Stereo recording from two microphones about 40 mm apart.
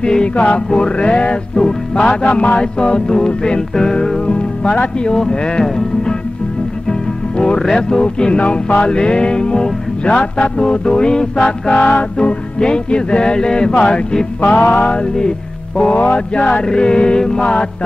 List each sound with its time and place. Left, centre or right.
0.0 s music: left
11.8 s music: left